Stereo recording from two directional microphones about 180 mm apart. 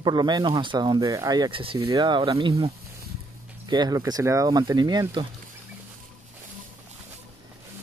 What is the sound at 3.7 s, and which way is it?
Speech, 20° right (ahead or behind).